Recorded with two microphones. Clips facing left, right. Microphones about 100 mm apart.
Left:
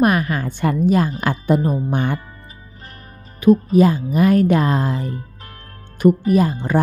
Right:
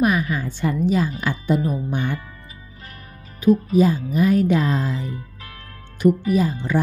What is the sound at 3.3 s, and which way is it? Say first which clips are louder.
Speech: left 3 dB; 60° left (ahead or behind).